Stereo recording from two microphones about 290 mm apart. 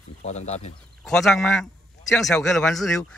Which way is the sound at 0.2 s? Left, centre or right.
Left.